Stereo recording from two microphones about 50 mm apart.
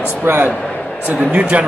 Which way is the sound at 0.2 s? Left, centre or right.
Right.